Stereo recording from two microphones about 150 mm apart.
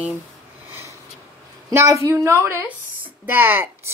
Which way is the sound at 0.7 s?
15° right (ahead or behind).